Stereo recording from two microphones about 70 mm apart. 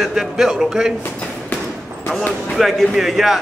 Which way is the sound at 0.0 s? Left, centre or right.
Centre.